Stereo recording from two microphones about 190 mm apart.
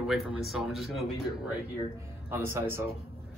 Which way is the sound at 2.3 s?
10° right (ahead or behind).